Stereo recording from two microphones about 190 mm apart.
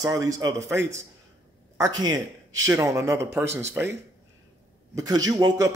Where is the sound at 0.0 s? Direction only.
20° right (ahead or behind).